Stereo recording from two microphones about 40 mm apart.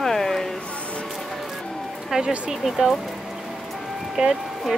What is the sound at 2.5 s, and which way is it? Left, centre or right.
Speech, centre.